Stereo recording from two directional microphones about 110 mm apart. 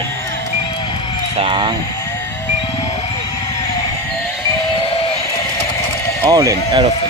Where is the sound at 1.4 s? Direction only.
50° right (ahead or behind).